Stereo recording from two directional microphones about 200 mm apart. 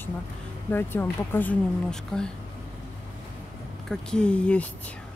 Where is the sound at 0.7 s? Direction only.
10° left (ahead or behind).